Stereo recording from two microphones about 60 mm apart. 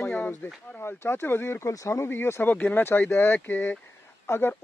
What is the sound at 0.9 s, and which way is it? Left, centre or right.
Speech, left.